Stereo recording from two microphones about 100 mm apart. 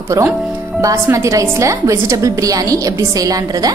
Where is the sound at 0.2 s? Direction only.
30° right (ahead or behind).